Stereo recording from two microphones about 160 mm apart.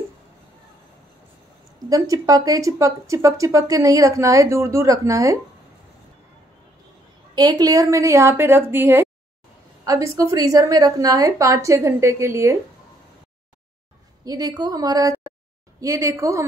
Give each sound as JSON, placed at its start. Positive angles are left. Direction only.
{"t": 1.9, "sound": "speech", "side_deg": -20}
{"t": 7.3, "sound": "a woman's voice", "side_deg": -25}
{"t": 14.2, "sound": "speech", "side_deg": -25}